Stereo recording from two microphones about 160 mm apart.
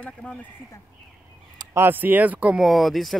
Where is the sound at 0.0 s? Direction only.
5° left (ahead or behind).